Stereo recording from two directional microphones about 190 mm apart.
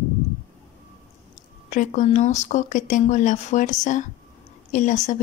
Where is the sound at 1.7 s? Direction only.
40° left (ahead or behind).